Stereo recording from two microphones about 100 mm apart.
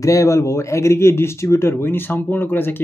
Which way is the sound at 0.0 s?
35° left (ahead or behind).